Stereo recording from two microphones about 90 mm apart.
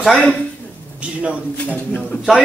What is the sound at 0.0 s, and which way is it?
Speech, 5° left (ahead or behind).